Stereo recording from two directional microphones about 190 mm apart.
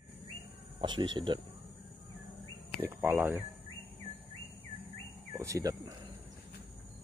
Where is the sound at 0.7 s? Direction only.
25° right (ahead or behind).